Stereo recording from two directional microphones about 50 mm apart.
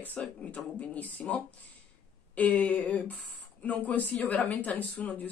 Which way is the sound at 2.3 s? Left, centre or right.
Left.